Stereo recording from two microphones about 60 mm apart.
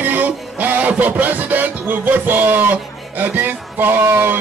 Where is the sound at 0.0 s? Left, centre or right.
Right.